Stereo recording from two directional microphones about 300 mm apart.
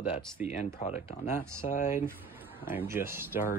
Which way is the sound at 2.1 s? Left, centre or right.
Centre.